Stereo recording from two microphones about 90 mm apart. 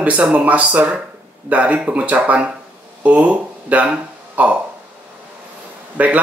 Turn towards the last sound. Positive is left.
turn(degrees=-15)  # may be behind; listen again after turning